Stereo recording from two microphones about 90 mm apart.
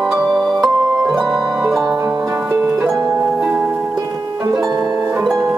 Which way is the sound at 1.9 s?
40° right (ahead or behind).